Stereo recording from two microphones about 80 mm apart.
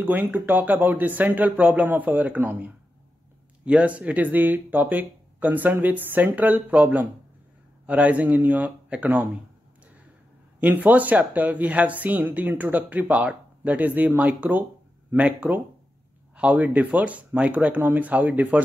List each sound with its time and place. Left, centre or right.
0.0 s speech: right
10.6 s speech: right